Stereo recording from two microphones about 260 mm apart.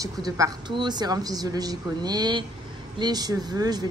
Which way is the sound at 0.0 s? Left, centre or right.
Centre.